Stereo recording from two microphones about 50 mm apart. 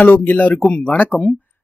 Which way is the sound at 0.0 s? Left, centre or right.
Left.